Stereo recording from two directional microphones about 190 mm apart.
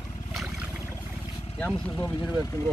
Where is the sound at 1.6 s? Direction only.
5° left (ahead or behind).